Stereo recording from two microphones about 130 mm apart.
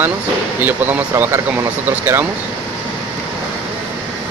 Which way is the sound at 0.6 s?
15° right (ahead or behind).